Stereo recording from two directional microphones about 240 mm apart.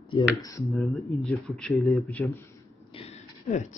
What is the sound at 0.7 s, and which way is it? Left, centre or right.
Speech, centre.